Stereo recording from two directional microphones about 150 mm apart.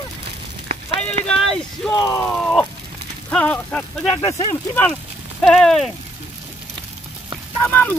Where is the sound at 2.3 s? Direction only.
5° left (ahead or behind).